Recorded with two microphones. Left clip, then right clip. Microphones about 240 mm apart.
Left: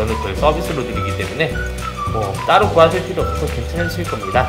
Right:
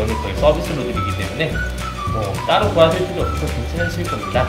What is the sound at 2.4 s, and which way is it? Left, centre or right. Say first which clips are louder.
Music: left 3 dB; centre.